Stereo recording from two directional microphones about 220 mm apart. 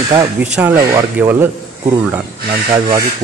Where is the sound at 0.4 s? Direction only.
5° right (ahead or behind).